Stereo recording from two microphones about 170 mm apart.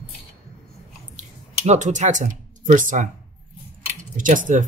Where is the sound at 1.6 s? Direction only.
45° right (ahead or behind).